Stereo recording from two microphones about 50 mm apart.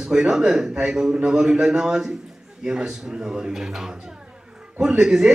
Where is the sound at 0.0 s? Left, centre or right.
Centre.